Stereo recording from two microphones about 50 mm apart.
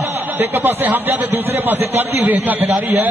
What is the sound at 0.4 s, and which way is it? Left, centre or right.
A man's voice, right.